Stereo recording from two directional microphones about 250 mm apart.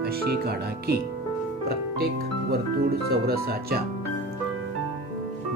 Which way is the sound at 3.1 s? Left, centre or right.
Right.